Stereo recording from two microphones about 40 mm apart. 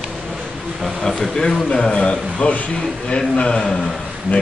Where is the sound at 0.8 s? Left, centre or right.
Centre.